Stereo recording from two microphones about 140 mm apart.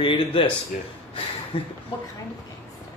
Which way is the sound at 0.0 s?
40° left (ahead or behind).